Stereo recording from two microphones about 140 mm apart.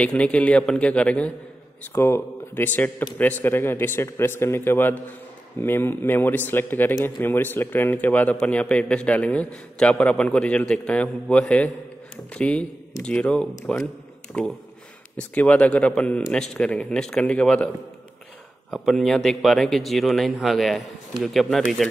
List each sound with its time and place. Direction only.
0.0 s a man's voice: 10° left (ahead or behind)
18.7 s a man's voice: centre (ahead or behind)